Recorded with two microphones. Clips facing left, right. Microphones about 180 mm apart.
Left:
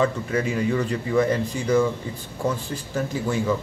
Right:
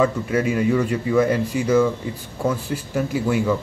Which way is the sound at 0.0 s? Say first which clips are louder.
Right 3 dB; 5° right (ahead or behind).